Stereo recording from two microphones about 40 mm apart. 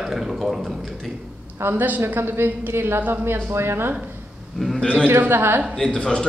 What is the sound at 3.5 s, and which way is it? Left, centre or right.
Speech, right.